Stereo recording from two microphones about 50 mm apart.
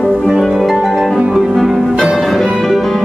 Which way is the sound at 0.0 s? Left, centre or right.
Centre.